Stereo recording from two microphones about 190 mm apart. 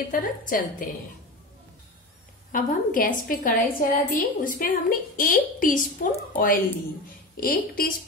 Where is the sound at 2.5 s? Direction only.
45° left (ahead or behind).